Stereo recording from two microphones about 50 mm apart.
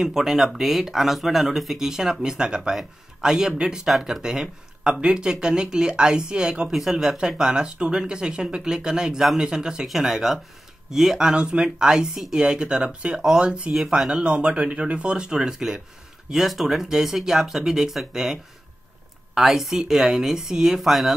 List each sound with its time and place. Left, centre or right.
0.0 s speech: centre
6.7 s speech: centre
7.1 s speech: centre
14.1 s speech: right; by 21.1 s centre